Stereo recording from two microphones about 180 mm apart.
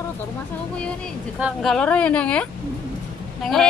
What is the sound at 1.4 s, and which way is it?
Speech, centre (ahead or behind).